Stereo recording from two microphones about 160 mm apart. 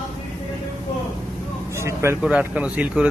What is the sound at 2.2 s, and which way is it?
Speech, 10° right (ahead or behind).